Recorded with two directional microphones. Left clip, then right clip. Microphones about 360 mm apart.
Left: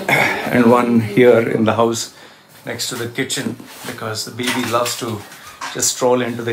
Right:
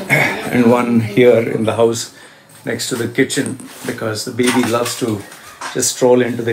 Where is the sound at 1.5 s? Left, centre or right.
Centre.